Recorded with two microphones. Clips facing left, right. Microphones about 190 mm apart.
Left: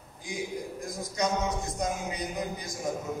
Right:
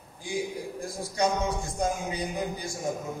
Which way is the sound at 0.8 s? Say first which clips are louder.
Right 4 dB; 30° right (ahead or behind).